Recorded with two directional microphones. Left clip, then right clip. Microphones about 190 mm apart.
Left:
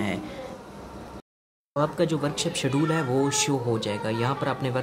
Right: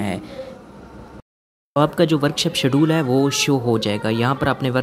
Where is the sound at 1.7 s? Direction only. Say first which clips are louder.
Right 8 dB; 35° right (ahead or behind).